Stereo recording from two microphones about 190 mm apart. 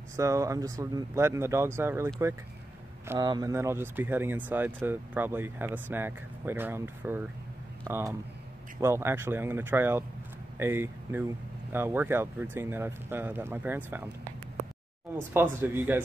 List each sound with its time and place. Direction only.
0.1 s speech: 15° right (ahead or behind)
3.1 s speech: 20° right (ahead or behind)
15.3 s speech: 10° right (ahead or behind)